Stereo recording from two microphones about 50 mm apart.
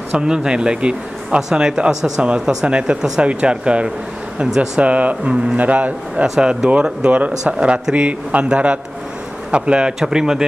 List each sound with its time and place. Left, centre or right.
0.1 s speech: centre
6.2 s speech: centre
6.5 s speech: right